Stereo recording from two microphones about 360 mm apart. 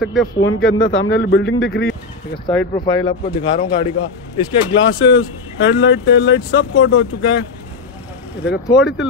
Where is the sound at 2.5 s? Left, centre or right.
Centre.